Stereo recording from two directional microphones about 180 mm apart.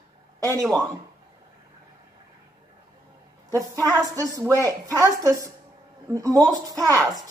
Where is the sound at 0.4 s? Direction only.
20° right (ahead or behind).